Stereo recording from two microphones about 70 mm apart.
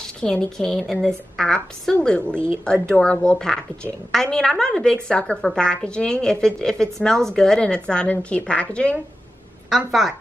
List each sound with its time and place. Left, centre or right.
0.0 s a woman's voice: centre
2.3 s speech: right
2.6 s a woman's voice: centre